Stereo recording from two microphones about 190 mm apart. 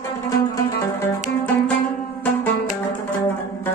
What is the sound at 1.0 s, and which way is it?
Music, 10° left (ahead or behind).